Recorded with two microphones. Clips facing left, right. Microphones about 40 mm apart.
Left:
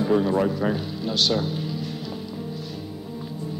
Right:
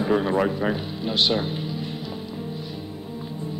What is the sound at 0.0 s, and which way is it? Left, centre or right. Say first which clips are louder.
Speech: even; right.